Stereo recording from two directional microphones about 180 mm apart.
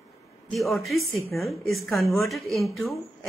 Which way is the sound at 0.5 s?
Centre (ahead or behind).